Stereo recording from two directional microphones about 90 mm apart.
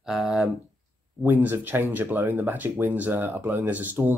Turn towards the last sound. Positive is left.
turn(degrees=-20)  # may be behind; listen again after turning